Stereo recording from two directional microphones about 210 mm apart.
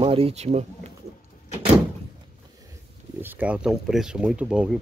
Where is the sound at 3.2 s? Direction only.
10° right (ahead or behind).